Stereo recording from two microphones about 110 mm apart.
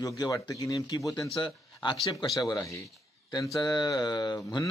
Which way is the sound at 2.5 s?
30° left (ahead or behind).